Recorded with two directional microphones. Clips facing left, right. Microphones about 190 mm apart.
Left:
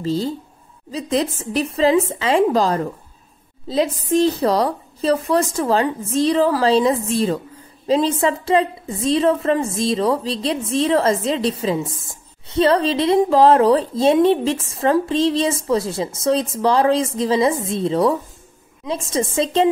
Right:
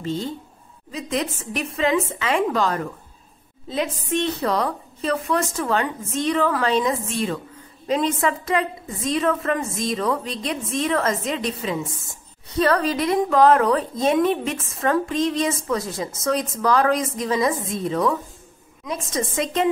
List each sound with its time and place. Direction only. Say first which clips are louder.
0.0 s a woman's voice: left 5 dB; 35° left (ahead or behind)